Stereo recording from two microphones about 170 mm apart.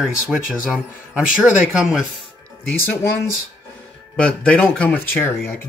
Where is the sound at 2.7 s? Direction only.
10° left (ahead or behind).